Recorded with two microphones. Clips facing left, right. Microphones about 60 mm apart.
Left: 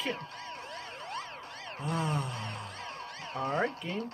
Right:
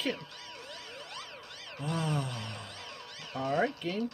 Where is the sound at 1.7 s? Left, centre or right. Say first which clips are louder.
Even; left.